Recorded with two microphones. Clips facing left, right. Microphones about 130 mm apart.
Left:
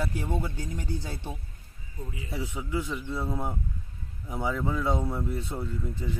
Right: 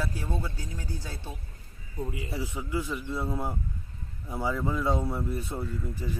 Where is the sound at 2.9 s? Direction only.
Centre (ahead or behind).